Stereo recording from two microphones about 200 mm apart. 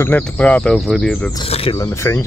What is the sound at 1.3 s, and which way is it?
Speech, 30° left (ahead or behind).